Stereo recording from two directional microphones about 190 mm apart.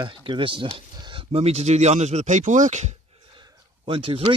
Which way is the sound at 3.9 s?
30° right (ahead or behind).